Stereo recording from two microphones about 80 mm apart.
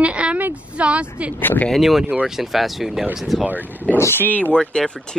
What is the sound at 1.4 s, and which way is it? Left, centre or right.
Speech, left.